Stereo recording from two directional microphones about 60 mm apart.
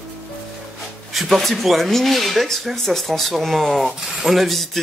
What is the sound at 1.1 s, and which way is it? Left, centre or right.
Speech, centre.